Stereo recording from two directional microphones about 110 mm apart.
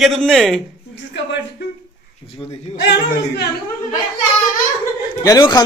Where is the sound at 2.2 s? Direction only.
60° left (ahead or behind).